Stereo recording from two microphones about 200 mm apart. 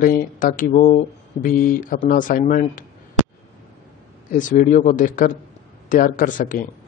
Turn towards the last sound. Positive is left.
turn(degrees=40)  # may be behind; listen again after turning